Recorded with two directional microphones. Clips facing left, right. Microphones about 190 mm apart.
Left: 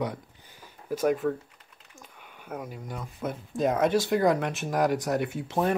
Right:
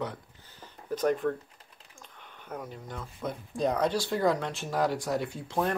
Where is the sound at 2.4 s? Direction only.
10° left (ahead or behind).